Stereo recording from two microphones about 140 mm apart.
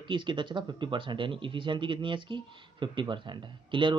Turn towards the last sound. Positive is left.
turn(degrees=-35)  # may be behind; listen again after turning